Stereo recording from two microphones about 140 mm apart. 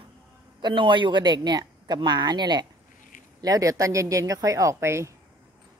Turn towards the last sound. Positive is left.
turn(degrees=-20)  # may be behind; listen again after turning